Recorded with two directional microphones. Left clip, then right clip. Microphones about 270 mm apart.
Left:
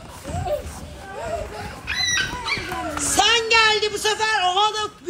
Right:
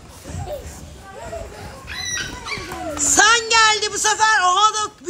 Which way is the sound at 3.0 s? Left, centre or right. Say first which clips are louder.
Right 4 dB; centre.